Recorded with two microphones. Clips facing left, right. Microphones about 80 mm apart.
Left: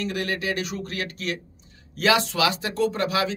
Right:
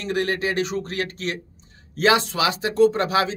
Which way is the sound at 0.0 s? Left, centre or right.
Right.